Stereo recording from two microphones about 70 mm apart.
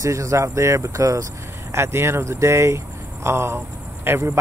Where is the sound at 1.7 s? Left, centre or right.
Right.